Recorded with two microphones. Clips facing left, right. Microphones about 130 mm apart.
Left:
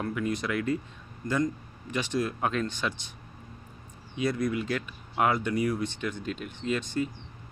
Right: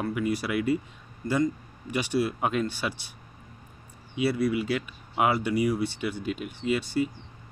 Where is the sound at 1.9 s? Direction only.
10° right (ahead or behind).